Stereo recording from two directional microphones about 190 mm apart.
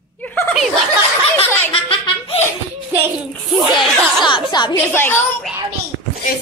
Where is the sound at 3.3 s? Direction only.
Centre (ahead or behind).